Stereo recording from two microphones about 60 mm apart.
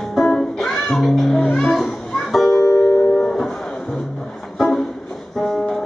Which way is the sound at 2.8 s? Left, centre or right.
Left.